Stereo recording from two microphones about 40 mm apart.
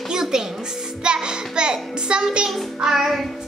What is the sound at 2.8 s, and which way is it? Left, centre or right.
Speech, centre.